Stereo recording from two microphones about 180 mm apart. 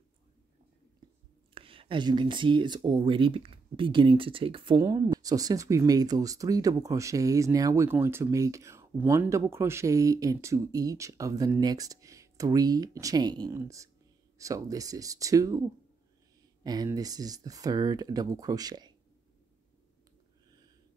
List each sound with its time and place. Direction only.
1.5 s speech: 30° right (ahead or behind)
16.6 s speech: 20° right (ahead or behind)